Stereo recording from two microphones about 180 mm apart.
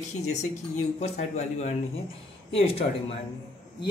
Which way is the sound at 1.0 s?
35° left (ahead or behind).